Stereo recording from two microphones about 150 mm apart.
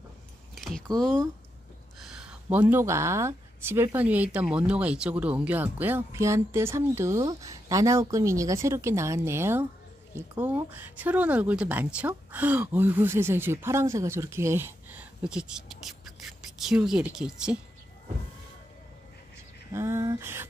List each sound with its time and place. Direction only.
0.6 s a sound: 5° left (ahead or behind)
2.0 s speech: 5° right (ahead or behind)
19.7 s speech: 20° right (ahead or behind)